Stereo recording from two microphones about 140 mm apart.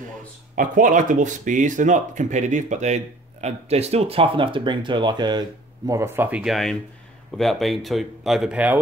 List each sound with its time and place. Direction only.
0.6 s speech: 70° right (ahead or behind); by 5.4 s 30° right (ahead or behind)
5.9 s speech: 20° right (ahead or behind)
6.4 s speech: centre (ahead or behind)